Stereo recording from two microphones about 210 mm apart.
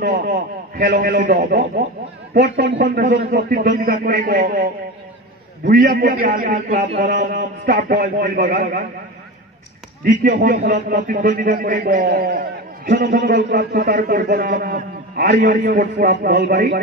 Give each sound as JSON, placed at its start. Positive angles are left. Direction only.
{"t": 0.7, "sound": "a man's voice", "side_deg": -50}
{"t": 2.8, "sound": "a man's voice", "side_deg": -40}
{"t": 5.7, "sound": "a man's voice", "side_deg": -45}
{"t": 6.9, "sound": "a sound", "side_deg": -35}
{"t": 10.2, "sound": "a man's voice", "side_deg": -45}